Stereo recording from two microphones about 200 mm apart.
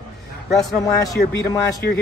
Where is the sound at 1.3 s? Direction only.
55° left (ahead or behind).